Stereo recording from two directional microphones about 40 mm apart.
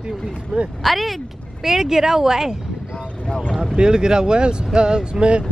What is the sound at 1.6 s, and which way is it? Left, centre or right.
Speech, centre.